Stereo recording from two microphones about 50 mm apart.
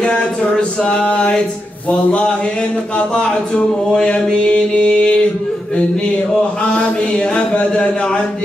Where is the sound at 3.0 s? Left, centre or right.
Centre.